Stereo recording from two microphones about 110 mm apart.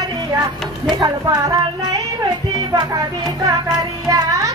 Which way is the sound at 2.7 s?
35° right (ahead or behind).